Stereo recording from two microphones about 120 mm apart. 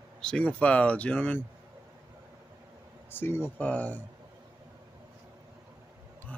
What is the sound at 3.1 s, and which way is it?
Speech, 20° left (ahead or behind).